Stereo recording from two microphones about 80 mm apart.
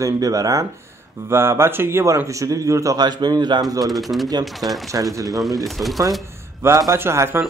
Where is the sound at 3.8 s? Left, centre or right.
Centre.